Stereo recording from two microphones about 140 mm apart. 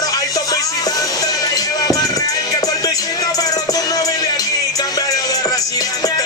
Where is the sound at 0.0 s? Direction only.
25° left (ahead or behind).